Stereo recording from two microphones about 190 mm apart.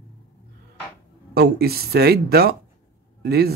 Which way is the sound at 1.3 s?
55° right (ahead or behind).